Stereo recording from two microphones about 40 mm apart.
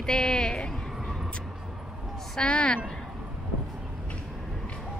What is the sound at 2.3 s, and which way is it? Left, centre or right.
Speech, left.